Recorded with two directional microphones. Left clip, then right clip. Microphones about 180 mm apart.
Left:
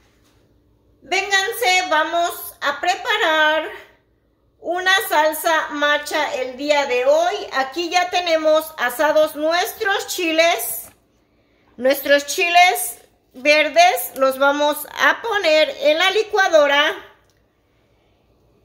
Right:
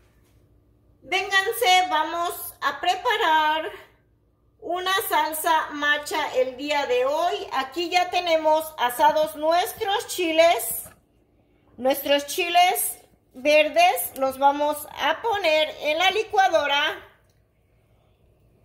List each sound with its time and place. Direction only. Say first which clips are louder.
1.0 s a sound: left 4 dB; 25° left (ahead or behind)
2.6 s a woman's voice: left 3 dB; 25° left (ahead or behind)
4.6 s a woman's voice: left 7 dB; 25° left (ahead or behind)
11.7 s a woman's voice: left 6 dB; 20° left (ahead or behind)
14.2 s a woman's voice: left 5 dB; 40° left (ahead or behind)